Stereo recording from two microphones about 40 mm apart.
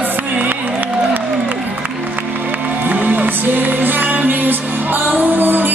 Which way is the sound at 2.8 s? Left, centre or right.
Right.